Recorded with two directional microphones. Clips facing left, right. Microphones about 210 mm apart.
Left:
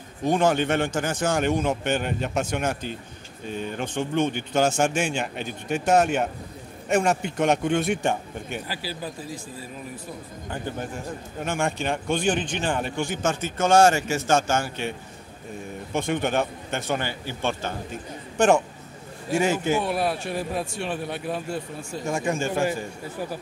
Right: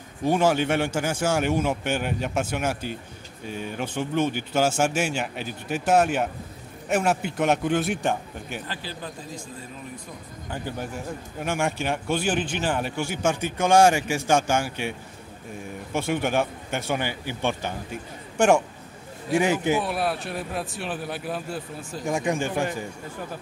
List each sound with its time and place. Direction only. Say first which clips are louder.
0.2 s a man's voice: even; 10° right (ahead or behind); by 9.4 s 10° left (ahead or behind)
11.4 s speech: even; 10° right (ahead or behind)
19.8 s a man's voice: left 1 dB; centre (ahead or behind)
22.0 s speech: right 1 dB; 15° right (ahead or behind)